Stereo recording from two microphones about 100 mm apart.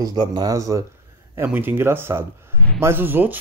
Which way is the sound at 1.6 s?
20° right (ahead or behind).